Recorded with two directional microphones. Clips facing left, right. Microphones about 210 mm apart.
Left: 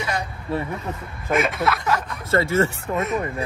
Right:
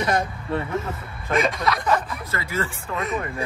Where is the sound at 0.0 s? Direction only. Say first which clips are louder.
Right 4 dB; 50° right (ahead or behind).